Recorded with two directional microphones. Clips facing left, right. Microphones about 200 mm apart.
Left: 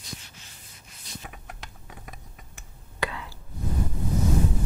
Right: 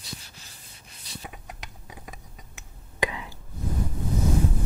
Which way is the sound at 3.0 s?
15° right (ahead or behind).